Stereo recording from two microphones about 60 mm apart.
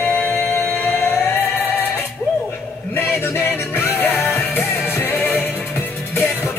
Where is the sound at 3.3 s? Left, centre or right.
Left.